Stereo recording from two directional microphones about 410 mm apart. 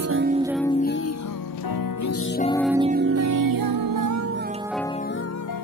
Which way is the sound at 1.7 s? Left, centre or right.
Left.